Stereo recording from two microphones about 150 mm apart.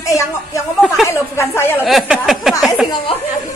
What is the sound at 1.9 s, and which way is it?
Speech, centre (ahead or behind).